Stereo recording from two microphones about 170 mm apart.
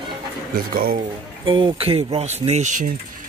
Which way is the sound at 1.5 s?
30° right (ahead or behind).